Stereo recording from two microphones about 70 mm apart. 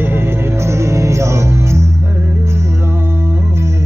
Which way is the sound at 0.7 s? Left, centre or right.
Right.